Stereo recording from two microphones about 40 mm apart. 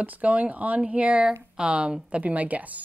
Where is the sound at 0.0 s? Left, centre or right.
Right.